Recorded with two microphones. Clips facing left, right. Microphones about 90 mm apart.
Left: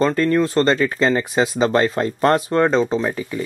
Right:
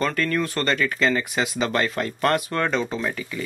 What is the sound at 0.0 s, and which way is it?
Speech, 25° left (ahead or behind).